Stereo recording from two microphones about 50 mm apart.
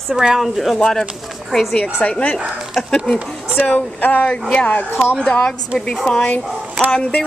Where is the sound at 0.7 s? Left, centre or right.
Centre.